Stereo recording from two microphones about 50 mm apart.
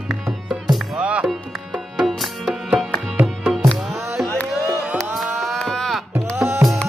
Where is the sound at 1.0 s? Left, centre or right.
Right.